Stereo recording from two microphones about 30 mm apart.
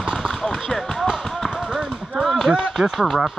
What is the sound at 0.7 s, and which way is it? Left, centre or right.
Speech, centre.